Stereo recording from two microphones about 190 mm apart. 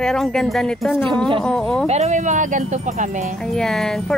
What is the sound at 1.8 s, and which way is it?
Speech, 35° right (ahead or behind).